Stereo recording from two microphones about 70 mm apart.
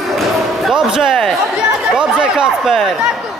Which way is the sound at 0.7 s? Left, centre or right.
Centre.